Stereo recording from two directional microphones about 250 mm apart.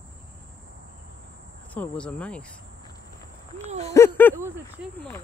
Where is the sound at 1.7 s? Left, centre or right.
Centre.